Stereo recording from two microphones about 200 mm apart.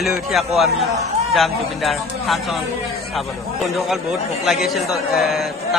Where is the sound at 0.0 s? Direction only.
Centre (ahead or behind).